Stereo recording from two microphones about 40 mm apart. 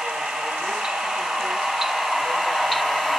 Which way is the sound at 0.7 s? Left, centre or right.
Centre.